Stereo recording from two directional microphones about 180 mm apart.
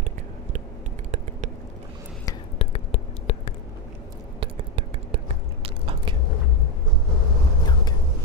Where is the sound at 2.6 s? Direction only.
35° left (ahead or behind).